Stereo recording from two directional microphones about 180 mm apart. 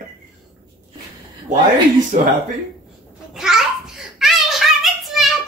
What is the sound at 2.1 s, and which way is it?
Speech, 50° right (ahead or behind).